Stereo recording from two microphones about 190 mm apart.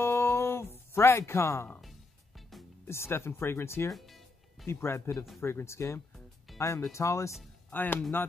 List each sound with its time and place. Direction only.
0.0 s music: 15° left (ahead or behind)
1.7 s music: centre (ahead or behind)
2.9 s speech: 15° left (ahead or behind)
3.9 s music: centre (ahead or behind)
4.6 s speech: 15° left (ahead or behind)
6.1 s music: centre (ahead or behind)
6.9 s speech: 15° left (ahead or behind)